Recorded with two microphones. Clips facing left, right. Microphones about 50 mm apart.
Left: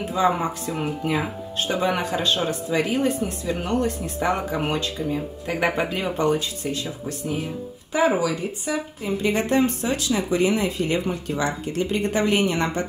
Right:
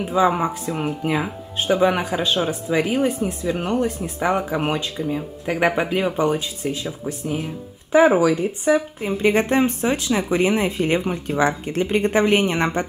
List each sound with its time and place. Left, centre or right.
0.0 s speech: centre
7.9 s speech: right